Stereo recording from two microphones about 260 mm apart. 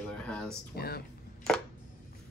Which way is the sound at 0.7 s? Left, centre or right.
Left.